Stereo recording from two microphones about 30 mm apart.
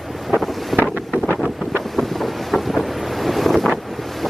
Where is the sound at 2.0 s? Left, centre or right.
Centre.